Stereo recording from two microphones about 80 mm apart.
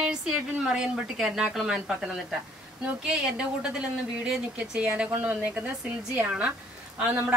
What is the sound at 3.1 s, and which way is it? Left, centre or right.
Speech, centre.